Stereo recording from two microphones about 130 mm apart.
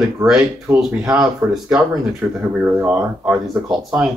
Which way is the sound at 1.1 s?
5° right (ahead or behind).